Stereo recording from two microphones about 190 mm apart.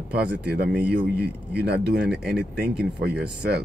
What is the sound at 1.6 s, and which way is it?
Speech, 60° right (ahead or behind).